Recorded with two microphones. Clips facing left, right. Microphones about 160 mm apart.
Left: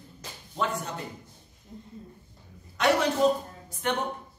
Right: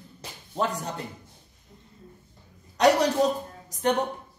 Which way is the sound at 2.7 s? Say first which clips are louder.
Right 4 dB; 35° right (ahead or behind).